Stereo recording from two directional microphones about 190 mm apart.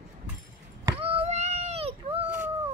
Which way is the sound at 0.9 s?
35° right (ahead or behind).